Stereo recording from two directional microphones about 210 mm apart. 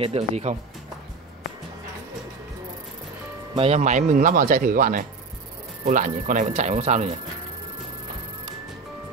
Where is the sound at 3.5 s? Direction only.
30° right (ahead or behind).